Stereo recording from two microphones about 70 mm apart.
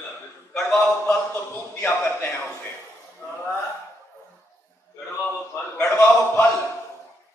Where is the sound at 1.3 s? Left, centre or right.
Left.